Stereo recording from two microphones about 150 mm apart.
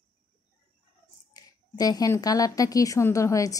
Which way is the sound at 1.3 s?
25° left (ahead or behind).